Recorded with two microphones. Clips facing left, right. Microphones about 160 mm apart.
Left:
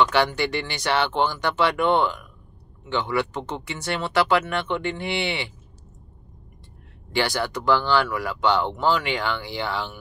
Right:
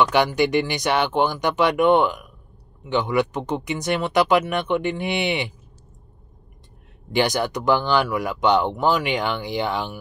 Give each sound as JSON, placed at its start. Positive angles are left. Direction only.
{"t": 0.0, "sound": "speech", "side_deg": -15}
{"t": 7.1, "sound": "speech", "side_deg": -15}